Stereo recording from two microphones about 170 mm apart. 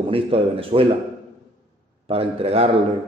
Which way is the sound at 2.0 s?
35° right (ahead or behind).